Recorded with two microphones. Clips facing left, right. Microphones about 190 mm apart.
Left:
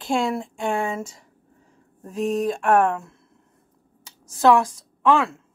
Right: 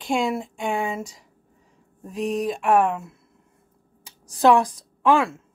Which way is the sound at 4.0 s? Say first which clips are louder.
Even; 15° right (ahead or behind).